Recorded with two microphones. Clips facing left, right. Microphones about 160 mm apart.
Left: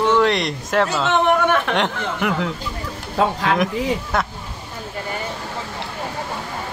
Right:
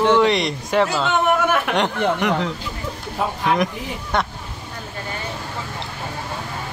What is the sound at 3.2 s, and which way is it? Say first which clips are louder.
Speech: left 5 dB; 90° left.